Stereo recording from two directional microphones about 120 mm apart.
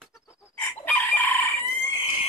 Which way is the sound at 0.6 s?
15° left (ahead or behind).